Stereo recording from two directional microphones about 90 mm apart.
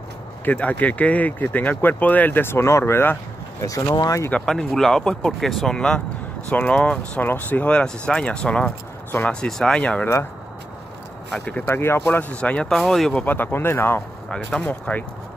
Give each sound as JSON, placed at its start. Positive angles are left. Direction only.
{"t": 0.5, "sound": "speech", "side_deg": 15}
{"t": 3.6, "sound": "speech", "side_deg": 40}
{"t": 4.3, "sound": "speech", "side_deg": 5}
{"t": 11.2, "sound": "speech", "side_deg": 10}
{"t": 11.6, "sound": "speech", "side_deg": 30}
{"t": 13.2, "sound": "speech", "side_deg": 20}
{"t": 14.3, "sound": "speech", "side_deg": 10}